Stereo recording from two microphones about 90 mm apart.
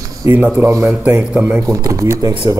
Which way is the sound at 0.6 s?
35° right (ahead or behind).